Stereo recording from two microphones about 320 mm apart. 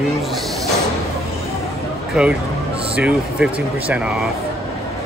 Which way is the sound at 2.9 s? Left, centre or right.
Centre.